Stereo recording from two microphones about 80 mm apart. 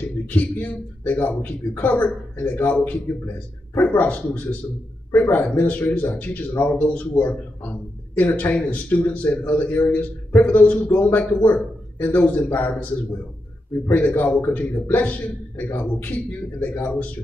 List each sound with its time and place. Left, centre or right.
0.0 s a man's voice: centre
13.8 s a man's voice: left